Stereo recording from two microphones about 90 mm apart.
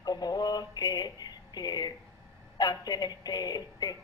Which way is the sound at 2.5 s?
45° left (ahead or behind).